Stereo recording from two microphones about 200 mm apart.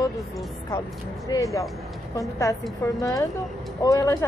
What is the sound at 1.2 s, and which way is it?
A woman's voice, 15° left (ahead or behind).